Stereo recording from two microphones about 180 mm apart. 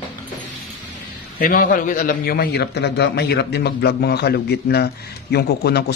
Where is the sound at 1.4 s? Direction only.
50° left (ahead or behind).